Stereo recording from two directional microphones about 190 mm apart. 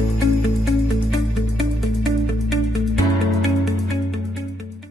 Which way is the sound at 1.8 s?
Centre (ahead or behind).